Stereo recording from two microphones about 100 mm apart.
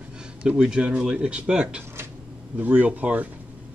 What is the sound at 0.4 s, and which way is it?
Speech, 10° right (ahead or behind).